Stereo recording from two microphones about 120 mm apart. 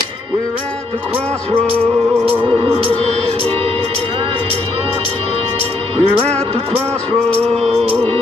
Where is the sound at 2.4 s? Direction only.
50° right (ahead or behind).